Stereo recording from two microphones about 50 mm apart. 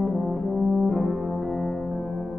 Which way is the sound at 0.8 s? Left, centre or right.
Centre.